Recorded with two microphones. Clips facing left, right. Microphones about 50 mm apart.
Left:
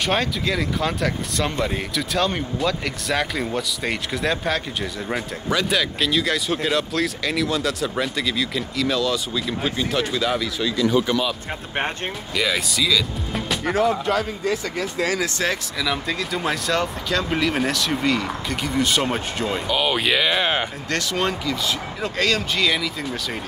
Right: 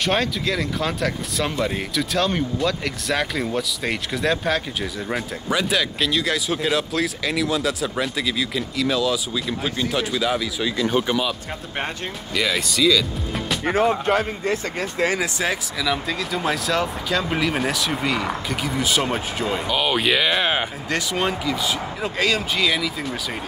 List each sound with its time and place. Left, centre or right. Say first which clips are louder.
0.0 s speech: even; centre
10.8 s a man's voice: left 2 dB; right
11.1 s speech: even; centre
12.4 s speech: right 1 dB; centre
13.7 s a man's voice: right 1 dB; right
15.3 s speech: even; centre